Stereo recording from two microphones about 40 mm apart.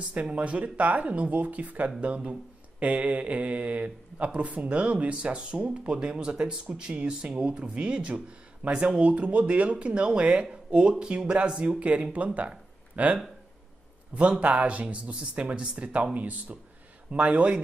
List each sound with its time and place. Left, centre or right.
0.1 s speech: right
12.4 s a sound: right
14.1 s speech: right